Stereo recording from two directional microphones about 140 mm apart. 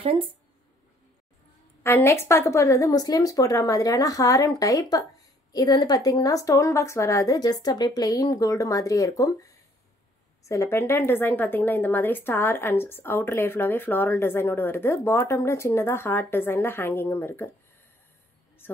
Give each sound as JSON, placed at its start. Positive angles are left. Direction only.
{"t": 1.8, "sound": "a woman's voice", "side_deg": 15}